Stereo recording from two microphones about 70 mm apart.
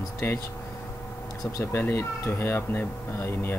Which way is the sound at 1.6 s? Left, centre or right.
Left.